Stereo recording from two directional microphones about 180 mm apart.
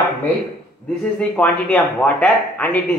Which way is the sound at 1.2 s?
5° left (ahead or behind).